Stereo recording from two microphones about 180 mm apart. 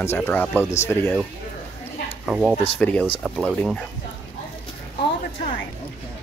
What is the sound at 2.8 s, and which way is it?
Speech, 10° left (ahead or behind).